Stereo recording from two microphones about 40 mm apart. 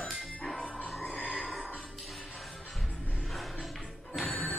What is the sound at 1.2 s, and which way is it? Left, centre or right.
Music, left.